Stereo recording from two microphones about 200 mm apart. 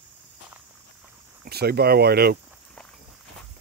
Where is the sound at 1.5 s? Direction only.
50° right (ahead or behind).